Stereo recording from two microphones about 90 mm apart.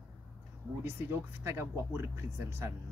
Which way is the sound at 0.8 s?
30° right (ahead or behind).